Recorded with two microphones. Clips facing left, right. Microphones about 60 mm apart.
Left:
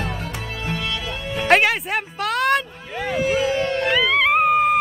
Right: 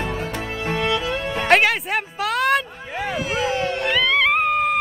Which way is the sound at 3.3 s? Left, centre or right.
Right.